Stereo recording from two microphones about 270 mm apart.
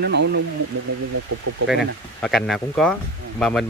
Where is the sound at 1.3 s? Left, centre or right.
Right.